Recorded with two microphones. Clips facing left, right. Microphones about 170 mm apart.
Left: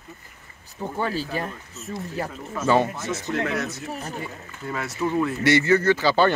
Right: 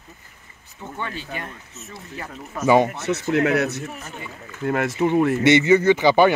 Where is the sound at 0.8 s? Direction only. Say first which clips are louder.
Left 5 dB; 35° left (ahead or behind).